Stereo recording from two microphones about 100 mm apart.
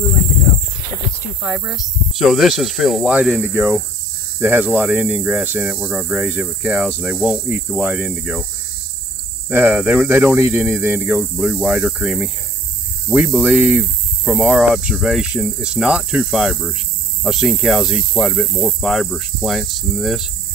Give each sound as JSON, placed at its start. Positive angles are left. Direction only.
{"t": 1.4, "sound": "speech", "side_deg": -5}
{"t": 9.5, "sound": "speech", "side_deg": -20}
{"t": 13.4, "sound": "speech", "side_deg": -15}